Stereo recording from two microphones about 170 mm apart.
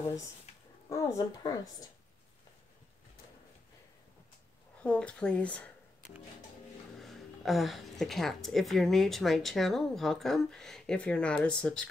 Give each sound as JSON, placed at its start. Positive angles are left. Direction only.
{"t": 0.5, "sound": "a sound", "side_deg": 40}
{"t": 0.8, "sound": "speech", "side_deg": 20}
{"t": 4.8, "sound": "speech", "side_deg": 5}
{"t": 7.0, "sound": "speech", "side_deg": 0}